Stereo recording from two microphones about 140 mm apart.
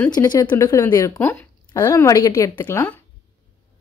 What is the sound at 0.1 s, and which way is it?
Speech, 30° left (ahead or behind).